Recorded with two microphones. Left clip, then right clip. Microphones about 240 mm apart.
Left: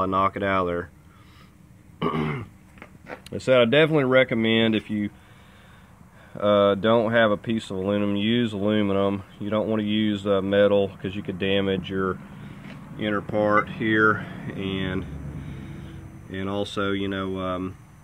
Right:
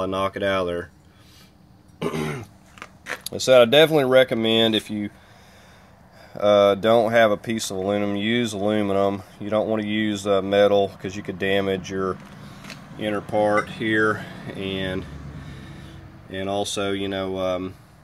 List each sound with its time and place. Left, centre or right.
0.0 s speech: centre
2.0 s throat clearing: centre
3.3 s speech: centre
6.3 s speech: centre
16.3 s speech: centre